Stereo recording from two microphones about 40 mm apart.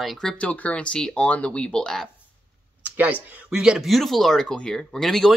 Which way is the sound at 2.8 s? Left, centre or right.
Right.